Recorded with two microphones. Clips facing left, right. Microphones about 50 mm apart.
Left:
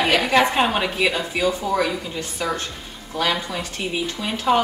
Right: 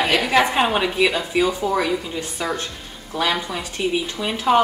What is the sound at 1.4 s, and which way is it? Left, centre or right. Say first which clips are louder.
Speech: right 2 dB; centre.